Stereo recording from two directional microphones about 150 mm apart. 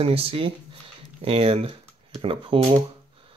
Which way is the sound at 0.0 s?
40° right (ahead or behind).